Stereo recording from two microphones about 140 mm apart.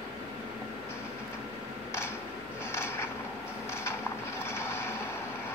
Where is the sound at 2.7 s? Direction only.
20° left (ahead or behind).